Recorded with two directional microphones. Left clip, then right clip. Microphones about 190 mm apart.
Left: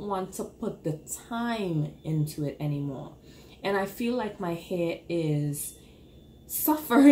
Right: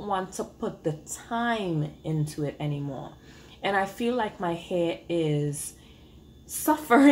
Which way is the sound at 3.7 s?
5° left (ahead or behind).